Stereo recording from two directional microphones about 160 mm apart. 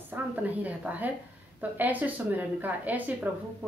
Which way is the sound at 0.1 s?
10° right (ahead or behind).